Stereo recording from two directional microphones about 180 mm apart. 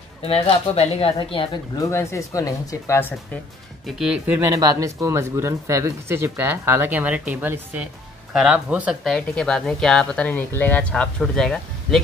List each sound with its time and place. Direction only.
0.3 s speech: 35° left (ahead or behind); by 3.2 s 15° left (ahead or behind)
3.8 s speech: 5° right (ahead or behind)